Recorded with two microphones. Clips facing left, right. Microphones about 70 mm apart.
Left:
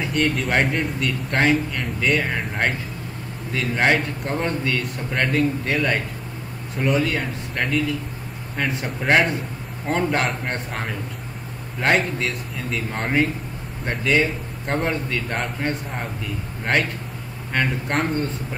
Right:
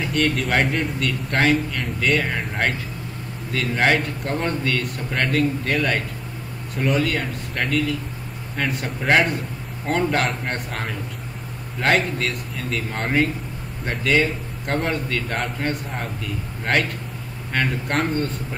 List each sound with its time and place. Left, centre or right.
0.0 s a man's voice: centre
10.2 s a man's voice: centre
11.8 s a man's voice: centre
14.8 s a man's voice: centre
17.5 s a man's voice: centre
17.9 s a man's voice: centre